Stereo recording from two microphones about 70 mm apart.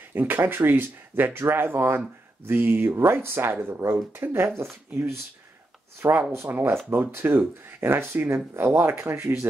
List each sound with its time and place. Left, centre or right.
0.1 s speech: right
5.9 s speech: right